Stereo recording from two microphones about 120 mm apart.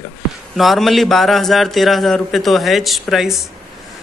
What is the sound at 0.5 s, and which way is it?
A man's voice, centre (ahead or behind).